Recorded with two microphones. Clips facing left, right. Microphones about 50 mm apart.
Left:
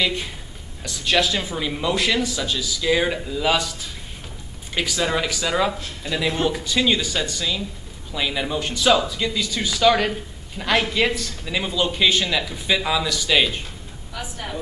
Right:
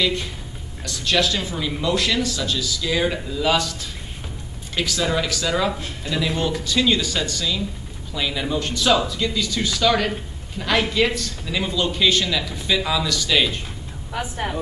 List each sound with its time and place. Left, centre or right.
0.0 s a man's voice: centre
4.7 s a man's voice: centre
14.1 s speech: right